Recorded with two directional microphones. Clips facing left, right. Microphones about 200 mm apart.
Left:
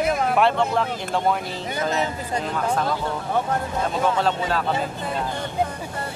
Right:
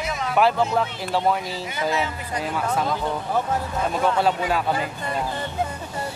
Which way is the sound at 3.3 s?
5° right (ahead or behind).